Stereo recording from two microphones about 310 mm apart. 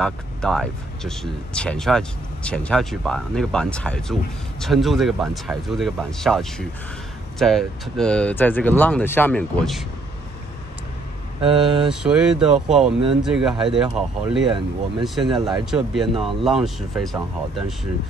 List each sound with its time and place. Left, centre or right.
0.0 s speech: centre
11.4 s speech: centre
11.9 s speech: centre